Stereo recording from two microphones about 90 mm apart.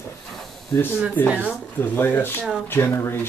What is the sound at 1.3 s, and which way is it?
Speech, 15° right (ahead or behind).